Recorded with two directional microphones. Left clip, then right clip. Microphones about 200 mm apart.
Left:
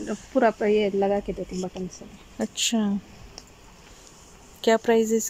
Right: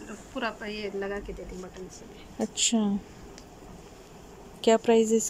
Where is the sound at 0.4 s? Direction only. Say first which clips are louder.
Left 13 dB; 40° left (ahead or behind).